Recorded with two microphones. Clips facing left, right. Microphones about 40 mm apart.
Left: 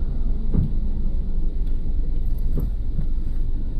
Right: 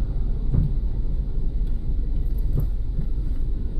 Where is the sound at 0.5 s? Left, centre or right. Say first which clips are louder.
Left 1 dB; centre.